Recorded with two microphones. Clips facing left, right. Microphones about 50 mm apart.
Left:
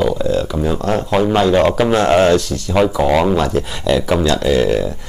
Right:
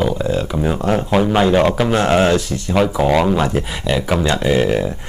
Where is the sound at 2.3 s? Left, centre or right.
Centre.